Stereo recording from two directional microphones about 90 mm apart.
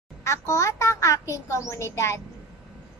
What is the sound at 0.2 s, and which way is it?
A child's voice, 35° left (ahead or behind).